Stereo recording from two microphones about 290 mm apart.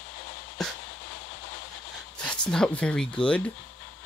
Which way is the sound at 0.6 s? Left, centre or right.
Centre.